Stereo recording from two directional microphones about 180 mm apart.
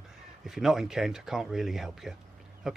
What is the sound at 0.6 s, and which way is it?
Speech, centre (ahead or behind).